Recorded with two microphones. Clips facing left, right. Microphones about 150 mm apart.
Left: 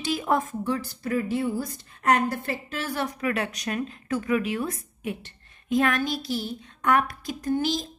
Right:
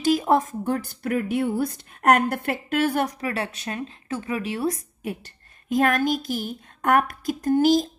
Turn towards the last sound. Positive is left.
turn(degrees=-45)  # may be behind; listen again after turning